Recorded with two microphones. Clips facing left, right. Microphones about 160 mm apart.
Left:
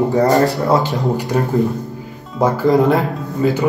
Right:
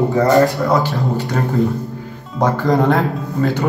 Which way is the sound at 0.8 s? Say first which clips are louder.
Left 1 dB; 15° left (ahead or behind).